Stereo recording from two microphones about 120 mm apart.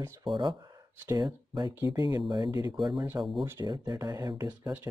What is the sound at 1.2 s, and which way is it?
Speech, 40° right (ahead or behind).